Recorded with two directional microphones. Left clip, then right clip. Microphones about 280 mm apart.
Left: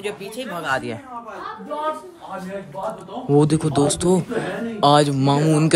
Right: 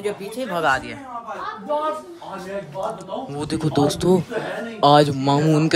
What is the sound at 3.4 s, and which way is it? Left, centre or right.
Speech, centre.